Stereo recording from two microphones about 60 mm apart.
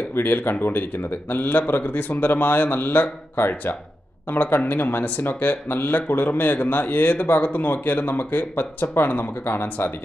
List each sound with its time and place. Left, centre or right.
0.1 s speech: left